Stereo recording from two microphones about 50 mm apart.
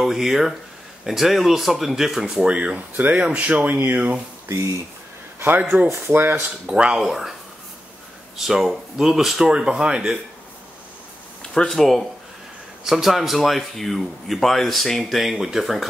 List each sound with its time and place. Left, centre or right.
0.0 s speech: centre
2.4 s speech: right
4.5 s speech: right
5.6 s speech: right
5.9 s speech: right
6.6 s speech: centre
7.0 s speech: centre
8.4 s speech: centre
11.7 s speech: centre